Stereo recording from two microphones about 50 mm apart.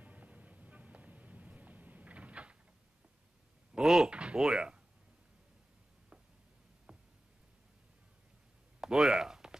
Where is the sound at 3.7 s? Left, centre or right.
Centre.